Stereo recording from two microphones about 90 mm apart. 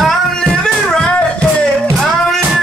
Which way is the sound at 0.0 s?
5° left (ahead or behind).